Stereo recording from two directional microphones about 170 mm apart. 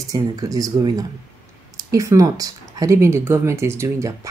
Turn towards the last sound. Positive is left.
turn(degrees=-15)  # may be behind; listen again after turning